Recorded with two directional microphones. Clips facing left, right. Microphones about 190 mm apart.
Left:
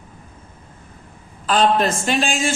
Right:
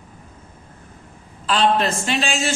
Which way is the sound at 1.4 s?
45° left (ahead or behind).